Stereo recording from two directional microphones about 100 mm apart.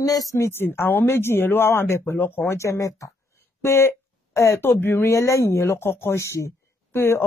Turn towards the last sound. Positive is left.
turn(degrees=25)  # may be behind; listen again after turning